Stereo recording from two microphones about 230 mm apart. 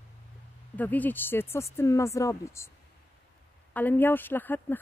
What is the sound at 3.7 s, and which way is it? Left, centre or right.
Speech, centre.